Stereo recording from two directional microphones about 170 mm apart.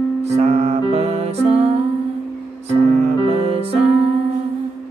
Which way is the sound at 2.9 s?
35° right (ahead or behind).